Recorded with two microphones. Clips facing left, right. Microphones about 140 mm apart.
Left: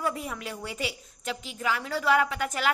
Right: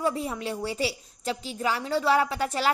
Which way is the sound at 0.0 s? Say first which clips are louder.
Right 4 dB; 30° right (ahead or behind).